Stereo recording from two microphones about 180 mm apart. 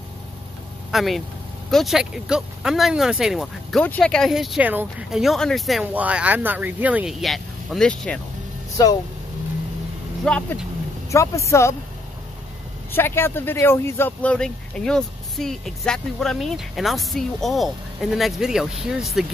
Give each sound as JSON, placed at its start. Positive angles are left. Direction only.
{"t": 0.9, "sound": "speech", "side_deg": 0}
{"t": 8.8, "sound": "speech", "side_deg": 20}
{"t": 10.2, "sound": "speech", "side_deg": 5}
{"t": 11.1, "sound": "speech", "side_deg": 15}
{"t": 12.9, "sound": "speech", "side_deg": 10}